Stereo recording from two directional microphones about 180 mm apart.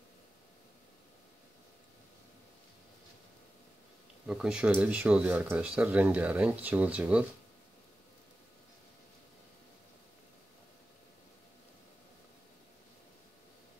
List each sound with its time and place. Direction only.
4.3 s speech: 5° right (ahead or behind)